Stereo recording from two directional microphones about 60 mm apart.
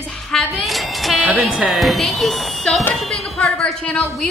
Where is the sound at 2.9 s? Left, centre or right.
Centre.